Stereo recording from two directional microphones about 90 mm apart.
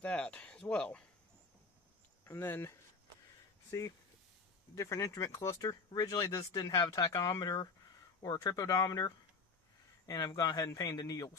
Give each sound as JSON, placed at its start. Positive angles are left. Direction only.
{"t": 0.0, "sound": "a sound", "side_deg": 15}
{"t": 2.2, "sound": "speech", "side_deg": 30}
{"t": 4.7, "sound": "speech", "side_deg": 35}